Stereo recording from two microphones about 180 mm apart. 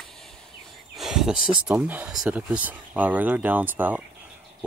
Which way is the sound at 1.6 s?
10° right (ahead or behind).